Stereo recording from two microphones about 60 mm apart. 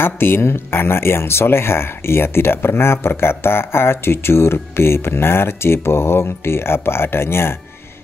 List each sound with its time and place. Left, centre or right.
0.0 s speech: left